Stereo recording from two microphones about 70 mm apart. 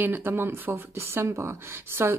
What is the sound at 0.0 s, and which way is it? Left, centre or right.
Speech, right.